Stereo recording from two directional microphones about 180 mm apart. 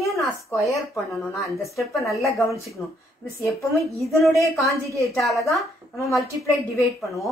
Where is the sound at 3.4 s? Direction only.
15° left (ahead or behind).